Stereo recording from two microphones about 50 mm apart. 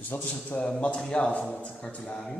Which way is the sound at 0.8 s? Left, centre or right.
Left.